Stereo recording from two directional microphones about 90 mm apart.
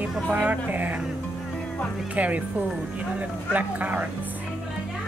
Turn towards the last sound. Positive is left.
turn(degrees=-20)  # may be behind; listen again after turning